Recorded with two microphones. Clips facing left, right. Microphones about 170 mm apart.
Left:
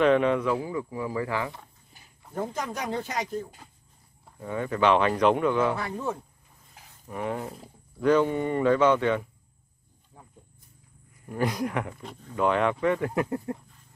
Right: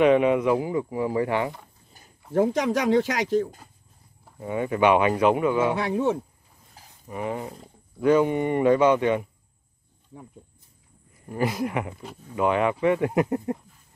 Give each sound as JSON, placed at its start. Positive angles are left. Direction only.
{"t": 0.0, "sound": "speech", "side_deg": -10}
{"t": 2.3, "sound": "speech", "side_deg": -90}
{"t": 4.4, "sound": "speech", "side_deg": -15}
{"t": 5.8, "sound": "speech", "side_deg": -80}
{"t": 7.1, "sound": "speech", "side_deg": 0}
{"t": 8.1, "sound": "speech", "side_deg": -10}
{"t": 11.2, "sound": "speech", "side_deg": -5}